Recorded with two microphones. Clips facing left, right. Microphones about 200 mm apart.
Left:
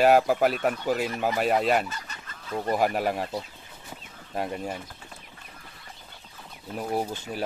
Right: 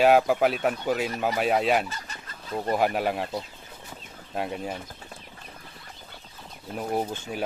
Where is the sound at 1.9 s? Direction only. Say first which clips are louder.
Even; 30° right (ahead or behind).